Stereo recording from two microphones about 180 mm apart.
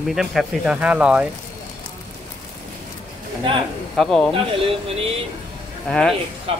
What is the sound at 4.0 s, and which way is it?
Speech, centre (ahead or behind).